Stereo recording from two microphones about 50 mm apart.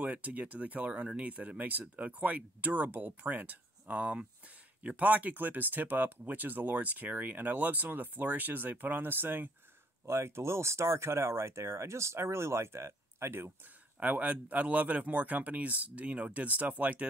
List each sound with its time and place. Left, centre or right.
0.0 s speech: right
10.0 s speech: right
13.9 s speech: right